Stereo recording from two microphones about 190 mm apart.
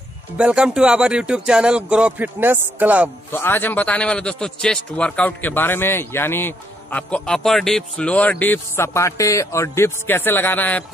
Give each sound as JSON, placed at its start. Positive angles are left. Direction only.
{"t": 0.4, "sound": "speech", "side_deg": -5}
{"t": 3.3, "sound": "a man's voice", "side_deg": 10}